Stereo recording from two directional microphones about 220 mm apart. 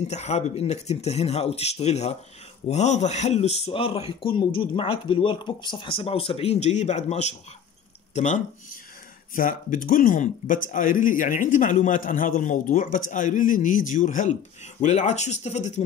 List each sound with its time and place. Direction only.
0.0 s speech: 30° left (ahead or behind)